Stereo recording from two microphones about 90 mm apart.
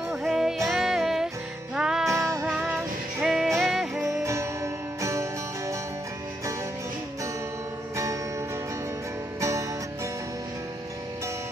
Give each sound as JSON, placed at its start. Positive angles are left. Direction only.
{"t": 0.1, "sound": "music", "side_deg": 0}
{"t": 2.0, "sound": "music", "side_deg": -35}
{"t": 3.2, "sound": "music", "side_deg": -5}
{"t": 4.0, "sound": "music", "side_deg": -35}
{"t": 7.9, "sound": "music", "side_deg": -35}
{"t": 9.4, "sound": "music", "side_deg": -35}